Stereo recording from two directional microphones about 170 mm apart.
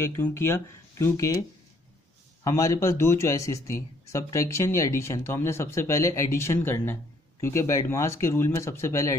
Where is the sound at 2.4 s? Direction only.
20° left (ahead or behind).